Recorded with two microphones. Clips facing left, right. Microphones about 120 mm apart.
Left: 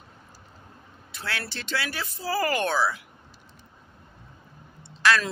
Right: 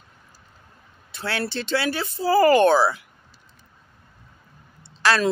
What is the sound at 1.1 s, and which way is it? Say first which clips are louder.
Speech: right 7 dB; 30° right (ahead or behind).